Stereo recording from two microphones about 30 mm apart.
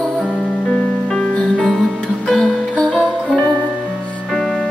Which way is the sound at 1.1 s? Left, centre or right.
Left.